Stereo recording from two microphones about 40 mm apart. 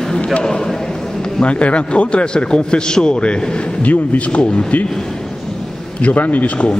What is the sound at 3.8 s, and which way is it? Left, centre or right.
Speech, left.